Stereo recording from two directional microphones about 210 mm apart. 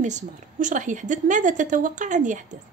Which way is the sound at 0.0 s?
35° right (ahead or behind).